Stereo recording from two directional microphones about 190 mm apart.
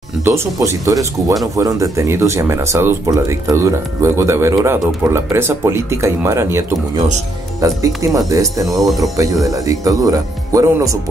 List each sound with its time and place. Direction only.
0.2 s speech: 15° right (ahead or behind)
7.6 s speech: 15° right (ahead or behind)
8.6 s speech: centre (ahead or behind)
9.0 s speech: 15° right (ahead or behind)